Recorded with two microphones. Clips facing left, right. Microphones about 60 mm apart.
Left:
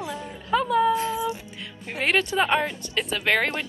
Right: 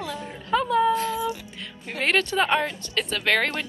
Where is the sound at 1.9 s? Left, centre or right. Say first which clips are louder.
Even; centre.